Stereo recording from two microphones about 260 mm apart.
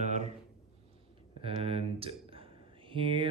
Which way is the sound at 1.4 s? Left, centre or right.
Right.